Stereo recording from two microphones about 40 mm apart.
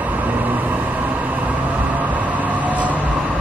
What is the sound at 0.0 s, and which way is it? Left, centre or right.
Vehicle, right.